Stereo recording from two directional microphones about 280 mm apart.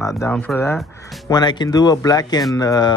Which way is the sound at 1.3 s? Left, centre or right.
Centre.